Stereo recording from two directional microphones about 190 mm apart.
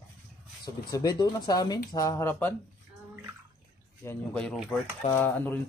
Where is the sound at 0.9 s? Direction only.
20° left (ahead or behind).